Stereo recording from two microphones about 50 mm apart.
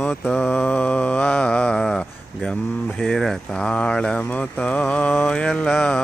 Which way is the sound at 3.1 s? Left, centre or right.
Centre.